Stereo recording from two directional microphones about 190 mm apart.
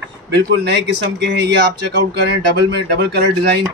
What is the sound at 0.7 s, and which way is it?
Speech, 65° right (ahead or behind).